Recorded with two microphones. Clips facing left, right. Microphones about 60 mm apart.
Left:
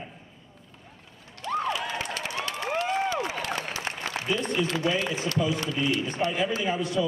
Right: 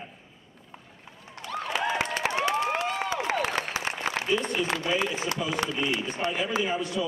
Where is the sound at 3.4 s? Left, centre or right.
Right.